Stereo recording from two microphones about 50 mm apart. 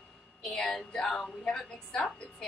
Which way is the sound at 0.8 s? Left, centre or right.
Centre.